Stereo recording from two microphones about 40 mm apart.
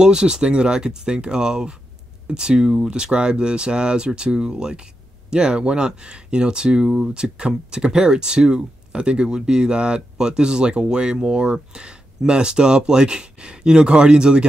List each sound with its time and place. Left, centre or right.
0.0 s speech: right